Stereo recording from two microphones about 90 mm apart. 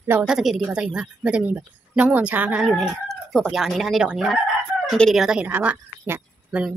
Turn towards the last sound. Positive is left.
turn(degrees=-20)  # may be behind; listen again after turning